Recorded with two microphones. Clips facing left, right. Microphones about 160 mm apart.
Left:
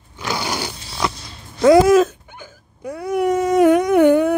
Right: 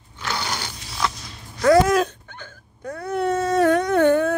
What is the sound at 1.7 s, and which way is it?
Hiccup, 10° left (ahead or behind).